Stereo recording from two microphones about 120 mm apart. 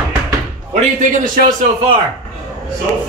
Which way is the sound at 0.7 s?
90° right.